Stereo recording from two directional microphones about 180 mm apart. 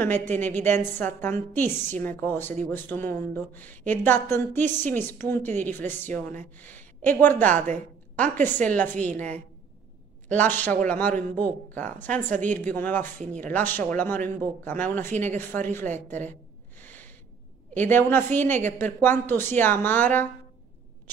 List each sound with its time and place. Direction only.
0.0 s a woman's voice: 10° left (ahead or behind)
7.5 s a woman's voice: 45° right (ahead or behind)
8.6 s a woman's voice: 10° left (ahead or behind)
12.3 s a woman's voice: 45° right (ahead or behind)
12.5 s a woman's voice: 10° left (ahead or behind)
15.7 s a sound: 10° left (ahead or behind)
17.7 s a woman's voice: 10° left (ahead or behind)